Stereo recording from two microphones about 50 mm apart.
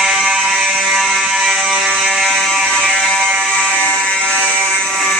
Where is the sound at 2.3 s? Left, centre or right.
Centre.